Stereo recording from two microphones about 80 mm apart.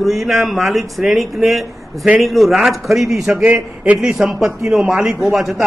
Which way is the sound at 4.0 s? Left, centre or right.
Centre.